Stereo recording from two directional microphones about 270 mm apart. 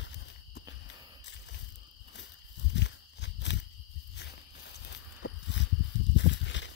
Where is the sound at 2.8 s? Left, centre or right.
Left.